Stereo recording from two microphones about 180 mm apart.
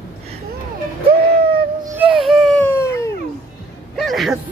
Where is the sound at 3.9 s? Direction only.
Centre (ahead or behind).